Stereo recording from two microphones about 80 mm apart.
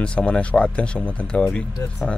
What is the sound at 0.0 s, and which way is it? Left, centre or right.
Speech, centre.